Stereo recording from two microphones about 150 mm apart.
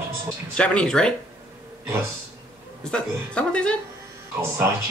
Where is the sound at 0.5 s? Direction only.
5° left (ahead or behind).